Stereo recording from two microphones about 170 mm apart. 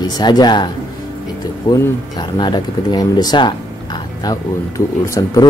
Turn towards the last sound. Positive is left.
turn(degrees=20)  # may be behind; listen again after turning